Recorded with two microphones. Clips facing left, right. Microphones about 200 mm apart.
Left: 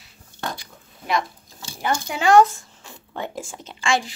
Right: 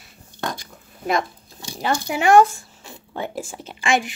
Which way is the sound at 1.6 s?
20° right (ahead or behind).